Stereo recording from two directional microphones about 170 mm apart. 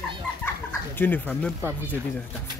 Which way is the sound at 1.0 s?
10° left (ahead or behind).